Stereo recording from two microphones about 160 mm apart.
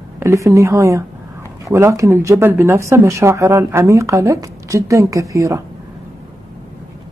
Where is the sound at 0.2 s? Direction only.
20° right (ahead or behind).